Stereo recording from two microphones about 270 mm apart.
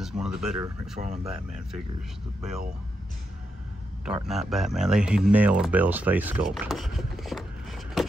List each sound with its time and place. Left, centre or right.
0.0 s speech: centre
1.0 s speech: right
4.0 s speech: centre